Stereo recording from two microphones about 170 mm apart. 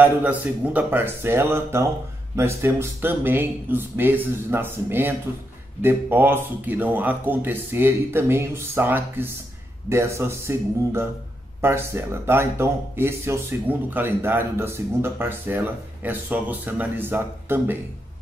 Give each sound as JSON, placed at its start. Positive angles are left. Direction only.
{"t": 0.0, "sound": "speech", "side_deg": -10}